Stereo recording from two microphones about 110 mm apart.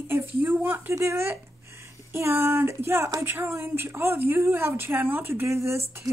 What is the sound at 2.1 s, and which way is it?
A woman's voice, 20° right (ahead or behind).